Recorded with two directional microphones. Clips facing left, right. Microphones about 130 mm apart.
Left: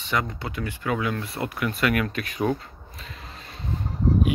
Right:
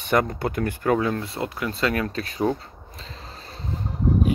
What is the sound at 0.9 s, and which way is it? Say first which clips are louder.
Speech: right 3 dB; 35° right (ahead or behind).